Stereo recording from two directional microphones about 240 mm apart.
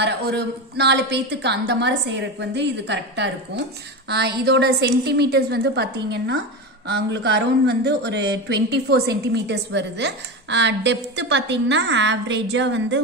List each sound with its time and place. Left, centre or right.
0.0 s speech: right